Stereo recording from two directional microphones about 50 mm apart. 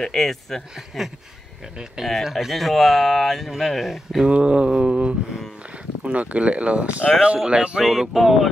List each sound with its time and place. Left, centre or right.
0.0 s speech: centre
0.7 s speech: centre
4.3 s mantra: right
7.8 s speech: centre